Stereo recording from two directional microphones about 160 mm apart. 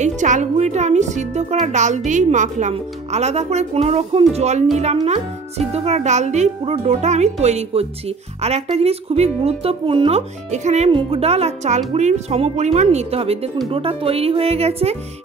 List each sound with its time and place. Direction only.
0.0 s speech: 50° right (ahead or behind)
5.7 s speech: 45° right (ahead or behind)
10.9 s speech: 35° right (ahead or behind)